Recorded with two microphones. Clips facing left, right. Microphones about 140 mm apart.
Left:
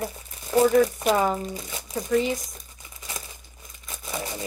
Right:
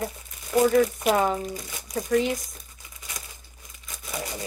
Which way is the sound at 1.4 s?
25° left (ahead or behind).